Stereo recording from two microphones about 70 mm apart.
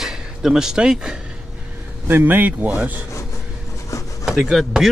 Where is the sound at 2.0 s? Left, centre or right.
Right.